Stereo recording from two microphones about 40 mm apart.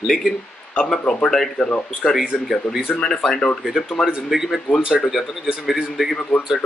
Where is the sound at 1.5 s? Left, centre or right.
Left.